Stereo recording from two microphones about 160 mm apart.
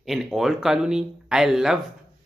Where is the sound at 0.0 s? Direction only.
Centre (ahead or behind).